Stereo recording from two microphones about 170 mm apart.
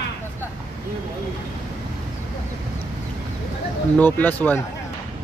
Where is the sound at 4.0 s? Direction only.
10° left (ahead or behind).